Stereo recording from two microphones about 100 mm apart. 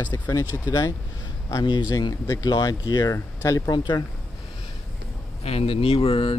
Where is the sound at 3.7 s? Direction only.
45° left (ahead or behind).